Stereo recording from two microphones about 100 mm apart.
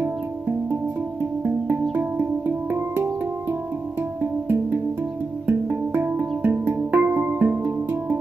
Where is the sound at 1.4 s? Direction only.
20° right (ahead or behind).